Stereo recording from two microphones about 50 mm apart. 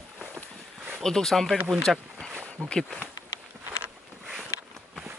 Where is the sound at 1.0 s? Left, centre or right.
Centre.